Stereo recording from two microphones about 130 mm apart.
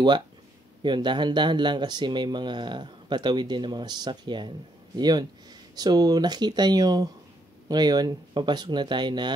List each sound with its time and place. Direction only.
0.8 s speech: 35° right (ahead or behind)